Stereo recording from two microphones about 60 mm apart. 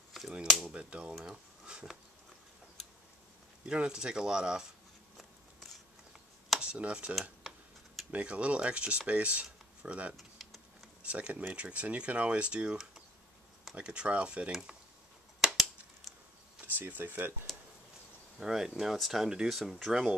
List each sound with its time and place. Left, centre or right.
0.2 s a sound: centre
0.7 s speech: centre
3.6 s speech: centre
5.1 s a sound: centre
6.6 s speech: centre
7.4 s tick-tock: centre
8.1 s speech: right
10.1 s a sound: centre
11.0 s speech: right
13.7 s speech: centre
16.7 s speech: right
17.5 s a sound: centre
18.4 s speech: centre